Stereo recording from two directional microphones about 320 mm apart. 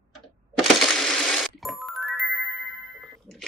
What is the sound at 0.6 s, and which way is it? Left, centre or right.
Music, centre.